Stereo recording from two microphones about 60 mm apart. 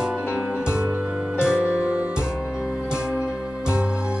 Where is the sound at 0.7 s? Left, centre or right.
Centre.